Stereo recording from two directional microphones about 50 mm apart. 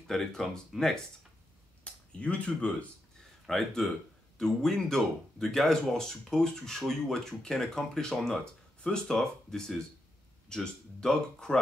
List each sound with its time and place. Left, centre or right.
0.0 s speech: centre
1.9 s speech: left
3.2 s a sound: centre
4.4 s speech: centre
9.0 s speech: centre
10.5 s speech: centre